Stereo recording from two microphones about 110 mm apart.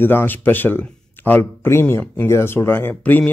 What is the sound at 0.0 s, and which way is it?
Speech, 20° left (ahead or behind).